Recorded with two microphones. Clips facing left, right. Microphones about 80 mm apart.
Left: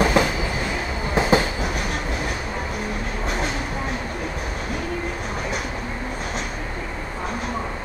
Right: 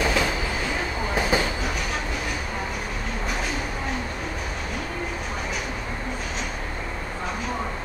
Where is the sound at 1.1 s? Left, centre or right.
Left.